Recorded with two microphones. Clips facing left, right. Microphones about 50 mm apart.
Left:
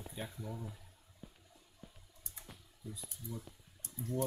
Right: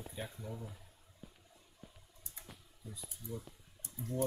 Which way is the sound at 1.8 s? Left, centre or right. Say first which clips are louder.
Even; centre.